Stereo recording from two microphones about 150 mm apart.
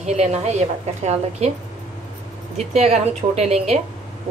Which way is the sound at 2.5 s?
45° right (ahead or behind).